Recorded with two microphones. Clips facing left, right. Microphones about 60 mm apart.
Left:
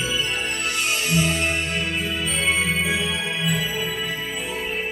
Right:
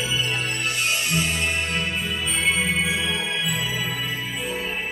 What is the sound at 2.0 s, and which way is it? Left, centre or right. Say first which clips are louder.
Music: left 1 dB; left.